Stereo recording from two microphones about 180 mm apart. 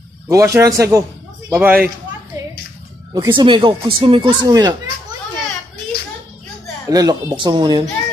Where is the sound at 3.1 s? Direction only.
25° right (ahead or behind).